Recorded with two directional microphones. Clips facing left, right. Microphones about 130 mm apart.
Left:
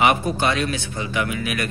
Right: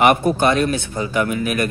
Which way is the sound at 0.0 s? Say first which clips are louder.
Right 4 dB; 55° right (ahead or behind).